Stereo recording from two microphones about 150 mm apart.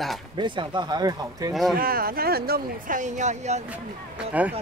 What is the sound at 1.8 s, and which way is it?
Speech, 80° right.